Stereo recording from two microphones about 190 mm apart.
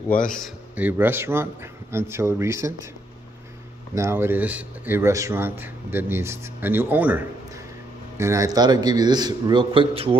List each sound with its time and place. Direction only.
0.3 s speech: 5° right (ahead or behind)
3.9 s a man's voice: 15° right (ahead or behind); by 10.1 s 30° right (ahead or behind)